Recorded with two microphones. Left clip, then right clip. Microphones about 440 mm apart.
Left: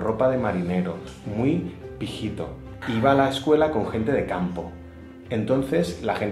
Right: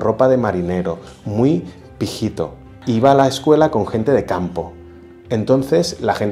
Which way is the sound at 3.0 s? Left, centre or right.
Right.